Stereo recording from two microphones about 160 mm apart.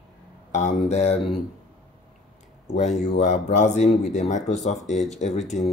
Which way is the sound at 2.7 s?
45° left (ahead or behind).